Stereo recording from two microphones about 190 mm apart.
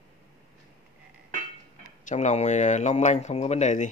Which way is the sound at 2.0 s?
40° left (ahead or behind).